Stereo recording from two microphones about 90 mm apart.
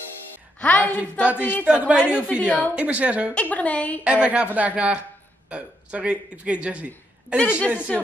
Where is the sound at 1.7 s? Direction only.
10° right (ahead or behind).